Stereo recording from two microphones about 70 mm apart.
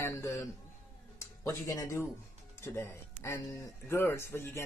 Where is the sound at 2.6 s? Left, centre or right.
Left.